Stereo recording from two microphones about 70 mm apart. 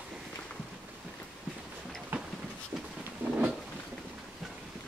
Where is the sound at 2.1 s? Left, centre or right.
Right.